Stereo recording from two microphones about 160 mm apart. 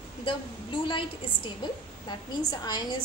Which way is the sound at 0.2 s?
30° left (ahead or behind).